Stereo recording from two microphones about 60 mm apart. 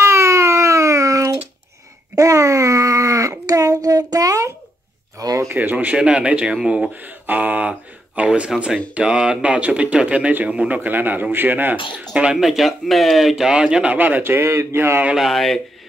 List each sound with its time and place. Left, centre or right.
0.0 s a sound: right
5.6 s speech: right
5.9 s speech: centre
7.0 s speech: right
10.8 s speech: right
12.4 s speech: centre
13.5 s speech: centre
13.9 s speech: right
15.1 s speech: centre